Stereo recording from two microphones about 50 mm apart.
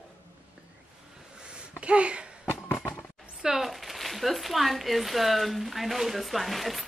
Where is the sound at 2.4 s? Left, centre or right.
Left.